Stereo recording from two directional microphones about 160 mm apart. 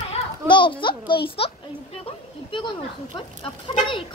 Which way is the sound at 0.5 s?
30° left (ahead or behind).